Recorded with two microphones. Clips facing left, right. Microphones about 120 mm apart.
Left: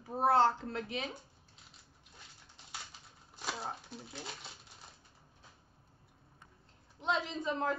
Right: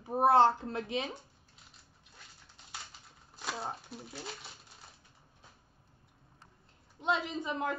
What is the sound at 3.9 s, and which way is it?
Speech, 5° right (ahead or behind).